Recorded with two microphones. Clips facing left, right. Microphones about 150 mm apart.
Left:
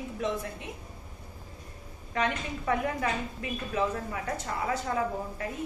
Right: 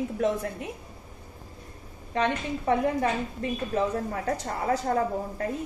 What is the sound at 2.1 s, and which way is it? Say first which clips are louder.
A woman's voice: right 4 dB; 30° right (ahead or behind).